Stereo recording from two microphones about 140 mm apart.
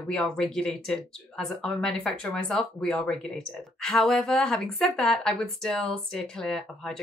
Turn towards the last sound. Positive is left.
turn(degrees=5)  # may be behind; listen again after turning